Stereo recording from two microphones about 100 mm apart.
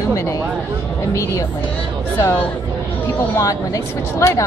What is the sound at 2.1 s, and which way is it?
A woman's voice, 25° left (ahead or behind).